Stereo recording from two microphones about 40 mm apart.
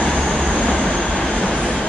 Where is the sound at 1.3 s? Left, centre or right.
Left.